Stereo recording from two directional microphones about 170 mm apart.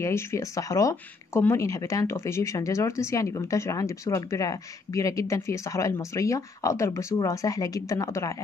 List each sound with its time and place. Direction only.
0.0 s speech: 15° left (ahead or behind)